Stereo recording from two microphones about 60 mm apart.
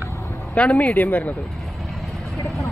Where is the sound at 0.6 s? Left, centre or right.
Left.